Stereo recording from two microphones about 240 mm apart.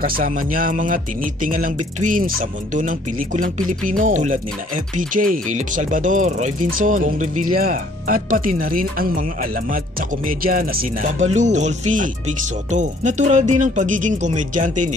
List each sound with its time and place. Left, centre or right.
0.0 s speech: right